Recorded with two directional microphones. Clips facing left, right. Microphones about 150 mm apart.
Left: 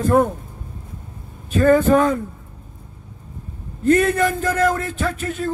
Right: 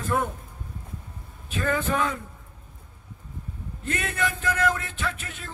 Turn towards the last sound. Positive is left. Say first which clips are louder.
# left 10 dB
turn(degrees=40)  # may be behind; listen again after turning